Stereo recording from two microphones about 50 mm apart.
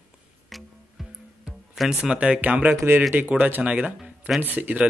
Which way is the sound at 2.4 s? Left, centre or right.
Right.